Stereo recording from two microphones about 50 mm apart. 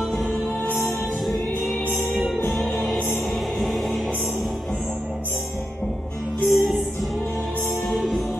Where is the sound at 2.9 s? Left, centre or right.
Centre.